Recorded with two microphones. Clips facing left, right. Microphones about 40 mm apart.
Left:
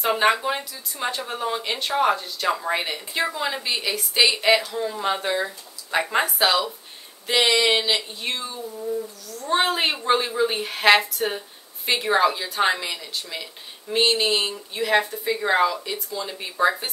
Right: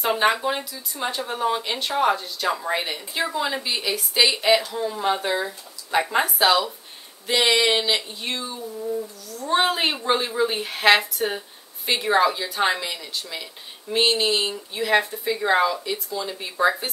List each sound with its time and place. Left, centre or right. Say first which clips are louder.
0.0 s speech: even; centre